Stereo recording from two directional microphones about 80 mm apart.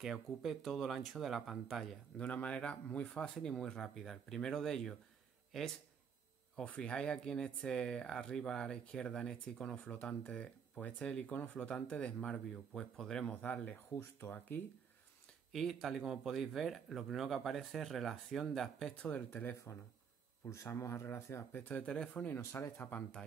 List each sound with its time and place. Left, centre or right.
0.0 s speech: centre
2.1 s speech: centre
6.5 s speech: centre
15.5 s speech: centre
19.0 s speech: left
20.4 s speech: left; by 22.4 s centre
22.4 s speech: left